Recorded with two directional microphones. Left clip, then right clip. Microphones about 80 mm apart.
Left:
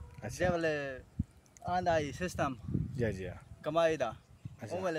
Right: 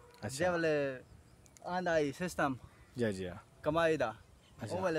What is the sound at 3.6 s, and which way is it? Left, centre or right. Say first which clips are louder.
Speech: left 1 dB; right.